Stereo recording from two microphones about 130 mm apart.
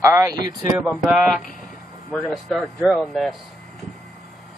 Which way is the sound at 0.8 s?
Centre (ahead or behind).